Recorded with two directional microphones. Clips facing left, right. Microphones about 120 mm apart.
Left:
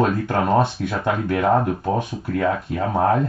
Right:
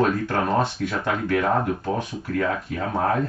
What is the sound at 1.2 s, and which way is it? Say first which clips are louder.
Speech: left 3 dB; 20° left (ahead or behind).